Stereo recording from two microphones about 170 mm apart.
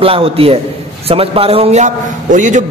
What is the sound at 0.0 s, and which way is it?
A man's voice, 35° right (ahead or behind).